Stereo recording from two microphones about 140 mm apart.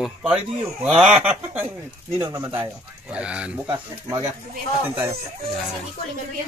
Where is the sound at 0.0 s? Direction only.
5° right (ahead or behind).